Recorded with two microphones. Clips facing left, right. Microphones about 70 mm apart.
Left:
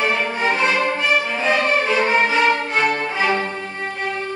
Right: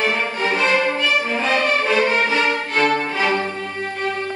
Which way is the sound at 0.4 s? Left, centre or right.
Left.